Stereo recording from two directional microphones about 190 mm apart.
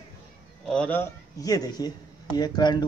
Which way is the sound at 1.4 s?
20° left (ahead or behind).